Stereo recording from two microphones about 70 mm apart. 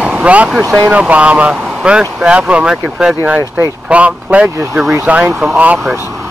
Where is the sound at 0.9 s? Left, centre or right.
Centre.